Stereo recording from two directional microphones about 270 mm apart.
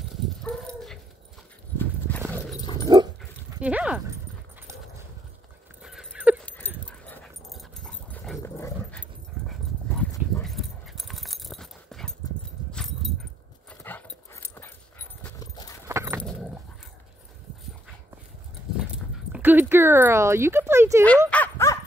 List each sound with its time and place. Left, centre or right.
0.0 s dog: centre
1.8 s horse: centre
2.6 s dog: centre
3.2 s dog: centre
5.8 s dog: centre
15.9 s dog: centre
16.2 s dog: centre
19.3 s a sound: centre
21.3 s dog: centre